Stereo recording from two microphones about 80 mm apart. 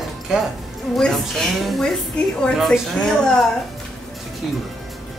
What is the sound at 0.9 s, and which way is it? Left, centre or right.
A woman's voice, centre.